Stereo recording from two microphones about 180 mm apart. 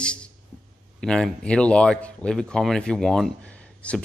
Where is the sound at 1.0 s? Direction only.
5° left (ahead or behind).